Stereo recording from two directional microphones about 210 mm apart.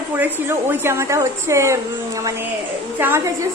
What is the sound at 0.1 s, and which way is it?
A woman's voice, 10° right (ahead or behind).